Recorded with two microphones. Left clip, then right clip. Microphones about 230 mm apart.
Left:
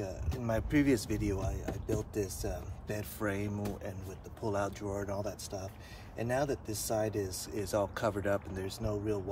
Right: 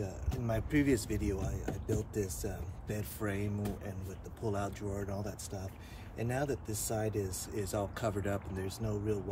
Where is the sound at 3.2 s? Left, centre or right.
Centre.